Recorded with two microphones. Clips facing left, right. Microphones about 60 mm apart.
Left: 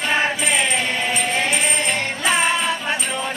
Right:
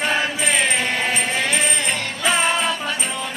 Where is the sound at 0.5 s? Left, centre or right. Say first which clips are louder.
Even; right.